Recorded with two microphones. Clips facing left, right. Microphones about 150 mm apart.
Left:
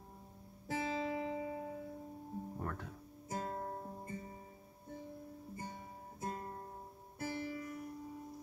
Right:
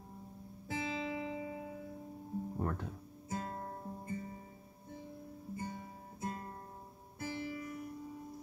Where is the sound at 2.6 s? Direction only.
25° right (ahead or behind).